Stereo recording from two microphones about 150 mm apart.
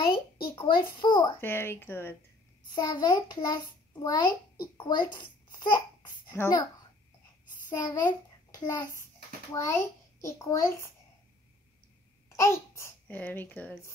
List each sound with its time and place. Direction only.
0.6 s a child's voice: 30° left (ahead or behind)
1.4 s speech: 15° left (ahead or behind)
2.7 s a child's voice: 25° left (ahead or behind)
6.3 s a child's voice: 20° left (ahead or behind)
7.7 s a child's voice: 25° left (ahead or behind)
12.3 s a child's voice: 20° left (ahead or behind)